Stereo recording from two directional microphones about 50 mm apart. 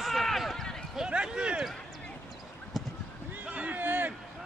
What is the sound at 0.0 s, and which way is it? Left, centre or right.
Basketball bounce, centre.